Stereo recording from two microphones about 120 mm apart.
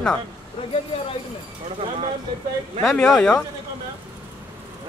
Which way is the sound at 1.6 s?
65° right (ahead or behind).